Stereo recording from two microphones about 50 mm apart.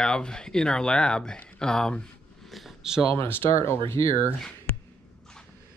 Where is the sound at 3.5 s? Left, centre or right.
Left.